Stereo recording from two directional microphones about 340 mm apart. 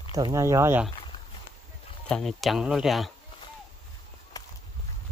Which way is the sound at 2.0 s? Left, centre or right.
Centre.